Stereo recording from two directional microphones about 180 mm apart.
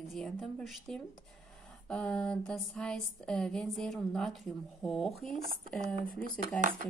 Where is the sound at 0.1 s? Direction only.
Centre (ahead or behind).